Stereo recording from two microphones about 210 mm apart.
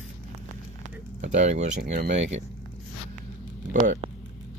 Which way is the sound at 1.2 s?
35° right (ahead or behind).